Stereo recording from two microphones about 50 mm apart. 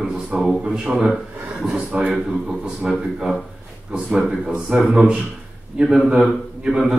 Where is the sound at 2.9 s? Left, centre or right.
Centre.